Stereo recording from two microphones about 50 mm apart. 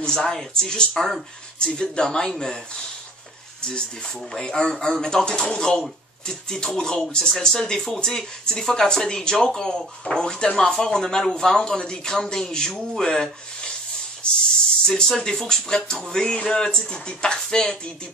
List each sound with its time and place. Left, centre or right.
0.0 s speech: centre